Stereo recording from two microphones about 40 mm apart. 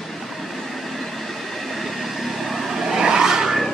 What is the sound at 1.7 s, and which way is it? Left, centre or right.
Vehicle, centre.